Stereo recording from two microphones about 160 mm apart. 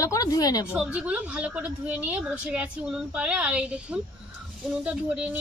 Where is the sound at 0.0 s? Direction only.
20° left (ahead or behind).